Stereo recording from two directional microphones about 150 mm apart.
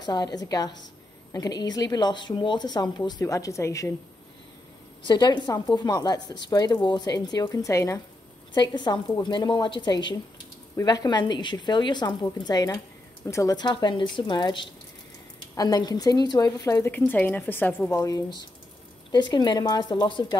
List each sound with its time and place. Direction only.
0.0 s speech: 25° left (ahead or behind)
5.0 s speech: 30° left (ahead or behind)
8.5 s a woman's voice: 30° left (ahead or behind); by 17.7 s 15° left (ahead or behind)
17.9 s speech: 25° left (ahead or behind)